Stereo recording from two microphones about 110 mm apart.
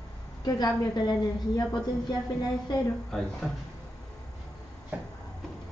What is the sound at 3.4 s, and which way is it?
Speech, centre (ahead or behind).